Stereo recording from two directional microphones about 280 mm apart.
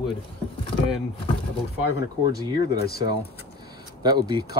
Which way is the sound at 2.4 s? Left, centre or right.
Centre.